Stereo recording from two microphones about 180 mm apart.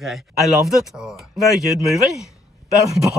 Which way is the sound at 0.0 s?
Centre (ahead or behind).